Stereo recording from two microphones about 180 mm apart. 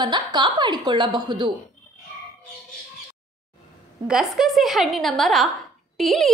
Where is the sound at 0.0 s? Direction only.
25° right (ahead or behind).